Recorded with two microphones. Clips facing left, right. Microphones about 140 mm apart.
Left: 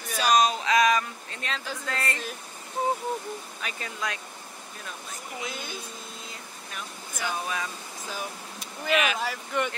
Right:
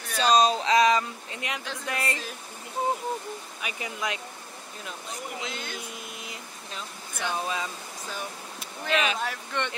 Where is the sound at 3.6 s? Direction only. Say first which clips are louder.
Right 2 dB; 15° right (ahead or behind).